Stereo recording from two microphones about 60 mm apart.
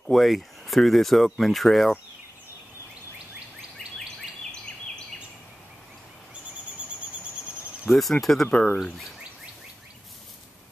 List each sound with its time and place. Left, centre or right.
0.1 s speech: centre
7.8 s speech: centre
8.5 s speech: left